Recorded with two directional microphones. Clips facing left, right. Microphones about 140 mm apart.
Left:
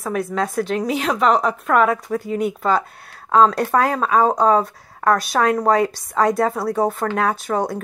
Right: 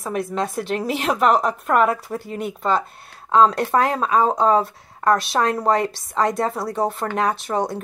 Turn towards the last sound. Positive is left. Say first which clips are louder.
# left 1 dB
turn(degrees=0)  # may be behind; listen again after turning